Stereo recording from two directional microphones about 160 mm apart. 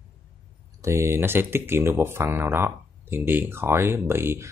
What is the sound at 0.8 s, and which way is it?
Speech, 15° right (ahead or behind).